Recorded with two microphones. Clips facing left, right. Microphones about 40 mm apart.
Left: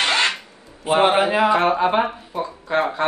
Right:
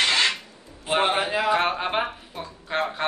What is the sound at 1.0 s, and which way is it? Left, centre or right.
Speech, left.